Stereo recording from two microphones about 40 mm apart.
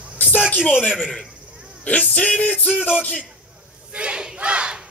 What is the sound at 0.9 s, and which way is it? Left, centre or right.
Speech, centre.